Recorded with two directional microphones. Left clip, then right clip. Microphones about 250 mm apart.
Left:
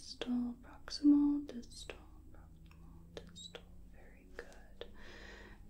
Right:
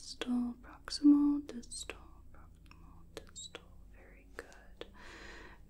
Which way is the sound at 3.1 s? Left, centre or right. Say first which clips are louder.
Right 2 dB; right.